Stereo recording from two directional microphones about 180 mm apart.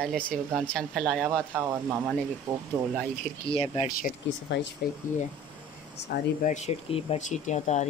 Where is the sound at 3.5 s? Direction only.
30° left (ahead or behind).